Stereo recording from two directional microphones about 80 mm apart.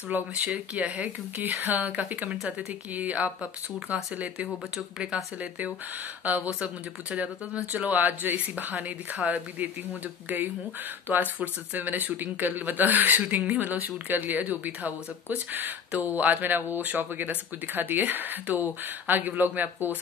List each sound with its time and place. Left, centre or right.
0.1 s speech: right
11.1 s speech: right